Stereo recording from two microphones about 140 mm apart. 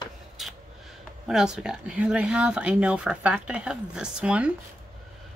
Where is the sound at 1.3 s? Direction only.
5° right (ahead or behind).